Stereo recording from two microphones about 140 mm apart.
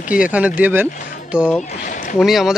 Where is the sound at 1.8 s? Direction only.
70° left (ahead or behind).